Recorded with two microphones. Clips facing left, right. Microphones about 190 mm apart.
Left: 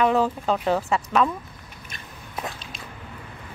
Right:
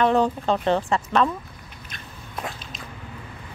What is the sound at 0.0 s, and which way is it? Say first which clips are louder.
Speech: right 1 dB; 5° left (ahead or behind).